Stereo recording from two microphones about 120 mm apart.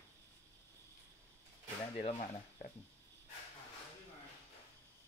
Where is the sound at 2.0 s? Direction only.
55° left (ahead or behind).